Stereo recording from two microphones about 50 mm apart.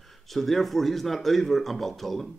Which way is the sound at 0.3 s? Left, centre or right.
Centre.